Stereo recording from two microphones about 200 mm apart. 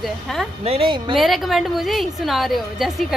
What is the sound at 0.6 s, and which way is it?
Speech, 30° right (ahead or behind).